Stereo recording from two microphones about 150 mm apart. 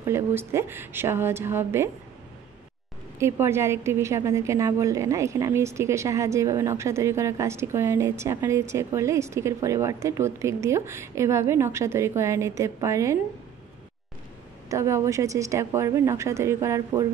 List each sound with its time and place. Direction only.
0.0 s a woman's voice: 15° right (ahead or behind)
3.2 s a woman's voice: 15° right (ahead or behind)
14.7 s a woman's voice: 20° right (ahead or behind)